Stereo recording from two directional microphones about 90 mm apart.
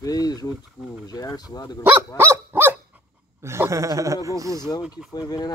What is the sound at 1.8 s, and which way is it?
Dog, 20° right (ahead or behind).